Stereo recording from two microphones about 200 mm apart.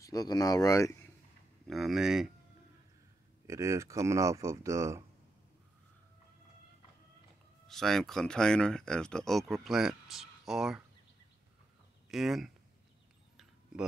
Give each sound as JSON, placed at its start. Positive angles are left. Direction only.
{"t": 0.0, "sound": "speech", "side_deg": 20}
{"t": 1.7, "sound": "speech", "side_deg": 0}
{"t": 3.4, "sound": "speech", "side_deg": -15}
{"t": 7.6, "sound": "speech", "side_deg": 0}
{"t": 12.1, "sound": "speech", "side_deg": 0}